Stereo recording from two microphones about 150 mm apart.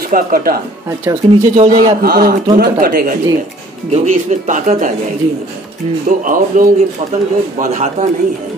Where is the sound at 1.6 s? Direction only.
45° right (ahead or behind).